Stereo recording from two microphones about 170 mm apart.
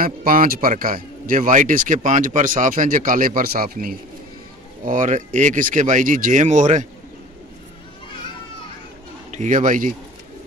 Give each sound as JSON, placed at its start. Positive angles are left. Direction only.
{"t": 0.0, "sound": "a man's voice", "side_deg": -55}
{"t": 9.3, "sound": "a man's voice", "side_deg": -45}